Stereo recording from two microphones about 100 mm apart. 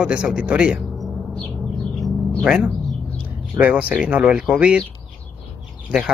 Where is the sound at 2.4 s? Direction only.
5° right (ahead or behind).